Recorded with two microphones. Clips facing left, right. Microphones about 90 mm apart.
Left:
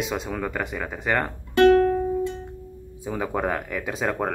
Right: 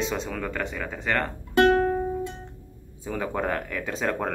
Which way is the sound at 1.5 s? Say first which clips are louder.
Left 4 dB; 25° right (ahead or behind).